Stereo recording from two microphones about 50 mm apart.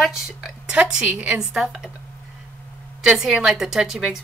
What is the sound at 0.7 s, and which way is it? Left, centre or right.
A woman's voice, right.